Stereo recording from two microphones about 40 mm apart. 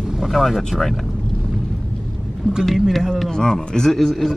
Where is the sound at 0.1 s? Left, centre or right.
Centre.